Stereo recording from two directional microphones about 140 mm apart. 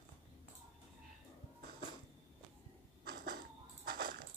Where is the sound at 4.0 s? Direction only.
90° right.